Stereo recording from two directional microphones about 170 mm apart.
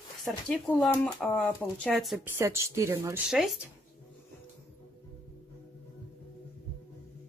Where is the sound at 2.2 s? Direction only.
15° right (ahead or behind).